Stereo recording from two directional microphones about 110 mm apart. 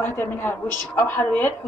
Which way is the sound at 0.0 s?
20° left (ahead or behind).